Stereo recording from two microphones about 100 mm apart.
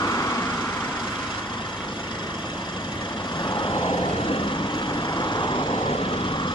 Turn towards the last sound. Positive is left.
turn(degrees=50)  # may be behind; listen again after turning